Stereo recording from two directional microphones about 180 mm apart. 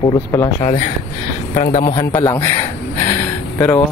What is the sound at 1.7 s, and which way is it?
Speech, 30° left (ahead or behind).